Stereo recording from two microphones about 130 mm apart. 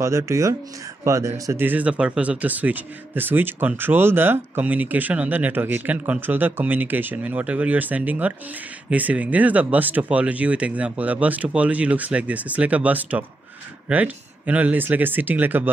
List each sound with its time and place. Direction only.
0.0 s speech: 20° right (ahead or behind)